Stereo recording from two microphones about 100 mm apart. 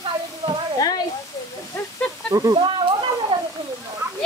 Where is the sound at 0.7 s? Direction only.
40° left (ahead or behind).